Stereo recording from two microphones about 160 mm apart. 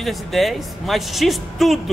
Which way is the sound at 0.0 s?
Centre (ahead or behind).